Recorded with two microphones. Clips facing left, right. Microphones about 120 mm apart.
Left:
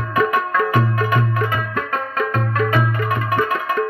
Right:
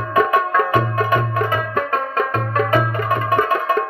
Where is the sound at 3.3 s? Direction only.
35° right (ahead or behind).